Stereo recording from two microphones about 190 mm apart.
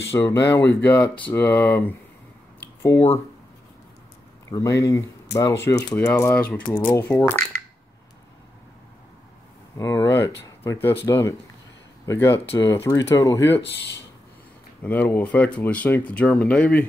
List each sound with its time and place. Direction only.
0.1 s speech: 15° left (ahead or behind)
4.5 s speech: 15° left (ahead or behind)
9.8 s speech: 15° left (ahead or behind)
14.8 s speech: 10° left (ahead or behind)